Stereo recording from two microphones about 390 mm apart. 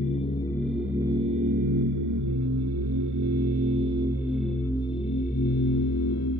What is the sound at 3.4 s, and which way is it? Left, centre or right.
Music, centre.